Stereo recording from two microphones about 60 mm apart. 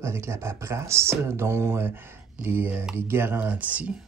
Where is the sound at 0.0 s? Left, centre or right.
Right.